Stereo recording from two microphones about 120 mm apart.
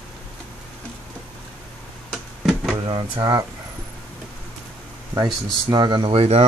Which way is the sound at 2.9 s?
40° right (ahead or behind).